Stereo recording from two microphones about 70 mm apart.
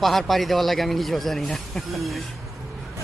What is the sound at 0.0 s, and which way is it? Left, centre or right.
Speech, centre.